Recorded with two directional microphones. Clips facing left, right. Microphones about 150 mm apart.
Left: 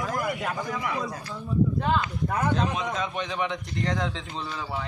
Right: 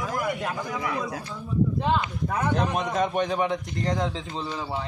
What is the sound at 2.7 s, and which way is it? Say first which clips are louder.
A man's voice: right 4 dB; 50° right (ahead or behind).